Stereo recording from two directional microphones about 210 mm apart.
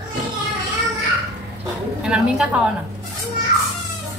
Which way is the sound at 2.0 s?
5° right (ahead or behind).